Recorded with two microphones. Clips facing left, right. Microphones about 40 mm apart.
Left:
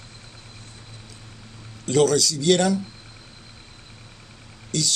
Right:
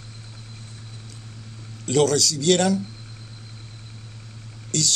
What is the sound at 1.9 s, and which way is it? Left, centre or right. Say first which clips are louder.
Speech: left 1 dB; centre.